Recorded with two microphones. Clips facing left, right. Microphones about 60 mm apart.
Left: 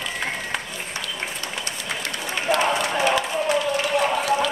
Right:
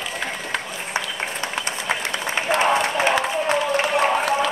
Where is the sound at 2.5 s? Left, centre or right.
Right.